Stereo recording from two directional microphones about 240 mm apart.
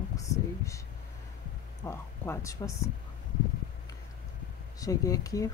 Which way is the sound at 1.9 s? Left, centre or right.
Centre.